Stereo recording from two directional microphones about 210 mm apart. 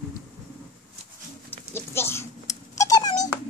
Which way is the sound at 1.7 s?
10° left (ahead or behind).